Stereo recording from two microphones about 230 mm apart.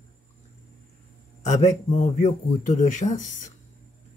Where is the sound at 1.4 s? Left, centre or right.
Left.